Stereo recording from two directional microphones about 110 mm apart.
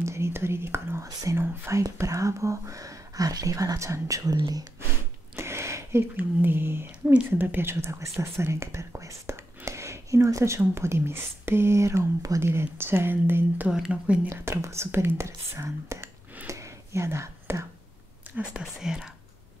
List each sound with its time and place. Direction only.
0.0 s speech: 25° right (ahead or behind)
13.7 s speech: 5° right (ahead or behind)
14.3 s speech: 25° right (ahead or behind)
18.5 s speech: 5° right (ahead or behind)